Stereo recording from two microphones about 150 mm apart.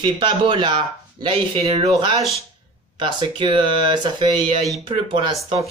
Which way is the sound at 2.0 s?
30° right (ahead or behind).